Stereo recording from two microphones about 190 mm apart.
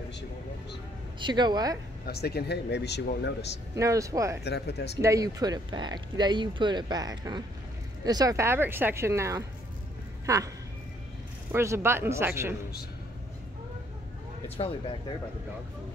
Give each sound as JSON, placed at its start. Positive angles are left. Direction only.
{"t": 1.2, "sound": "speech", "side_deg": -20}
{"t": 2.0, "sound": "speech", "side_deg": 60}
{"t": 3.7, "sound": "speech", "side_deg": -15}
{"t": 4.5, "sound": "speech", "side_deg": 60}
{"t": 5.0, "sound": "speech", "side_deg": -20}
{"t": 11.5, "sound": "speech", "side_deg": -15}
{"t": 14.6, "sound": "speech", "side_deg": 30}